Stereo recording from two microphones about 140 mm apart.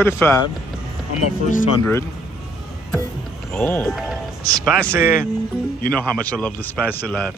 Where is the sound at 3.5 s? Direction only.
10° left (ahead or behind).